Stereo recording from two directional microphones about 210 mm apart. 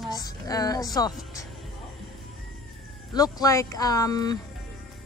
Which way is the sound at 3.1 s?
15° left (ahead or behind).